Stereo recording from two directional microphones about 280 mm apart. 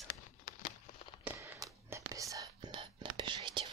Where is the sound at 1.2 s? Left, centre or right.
Centre.